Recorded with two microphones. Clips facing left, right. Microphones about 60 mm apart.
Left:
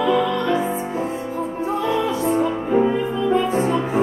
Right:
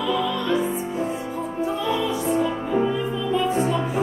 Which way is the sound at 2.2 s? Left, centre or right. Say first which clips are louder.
Left 3 dB; left.